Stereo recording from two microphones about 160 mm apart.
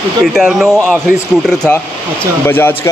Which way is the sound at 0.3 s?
Centre (ahead or behind).